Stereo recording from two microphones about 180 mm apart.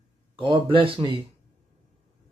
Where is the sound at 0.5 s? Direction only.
30° right (ahead or behind).